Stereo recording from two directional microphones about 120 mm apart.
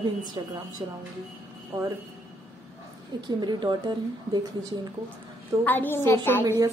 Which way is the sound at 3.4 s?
40° right (ahead or behind).